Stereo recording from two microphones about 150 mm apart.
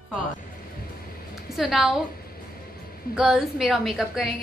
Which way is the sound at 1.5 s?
Centre (ahead or behind).